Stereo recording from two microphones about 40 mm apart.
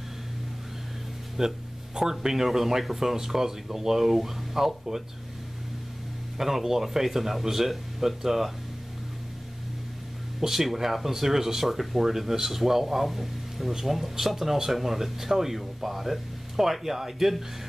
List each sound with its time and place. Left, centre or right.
1.4 s speech: centre
6.3 s speech: centre
10.4 s speech: centre